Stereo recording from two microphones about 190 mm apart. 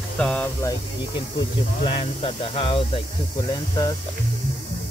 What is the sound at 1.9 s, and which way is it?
Speech, 30° left (ahead or behind).